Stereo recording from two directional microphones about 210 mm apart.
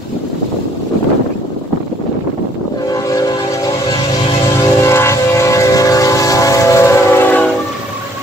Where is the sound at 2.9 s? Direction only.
15° left (ahead or behind).